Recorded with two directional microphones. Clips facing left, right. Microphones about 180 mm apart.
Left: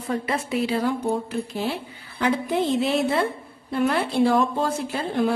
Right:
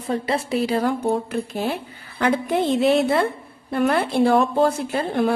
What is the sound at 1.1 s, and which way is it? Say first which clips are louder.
Speech: right 2 dB; 55° right (ahead or behind).